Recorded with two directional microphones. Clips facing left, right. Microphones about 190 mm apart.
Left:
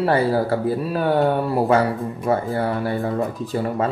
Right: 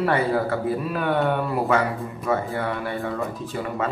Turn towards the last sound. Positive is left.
turn(degrees=35)  # may be behind; listen again after turning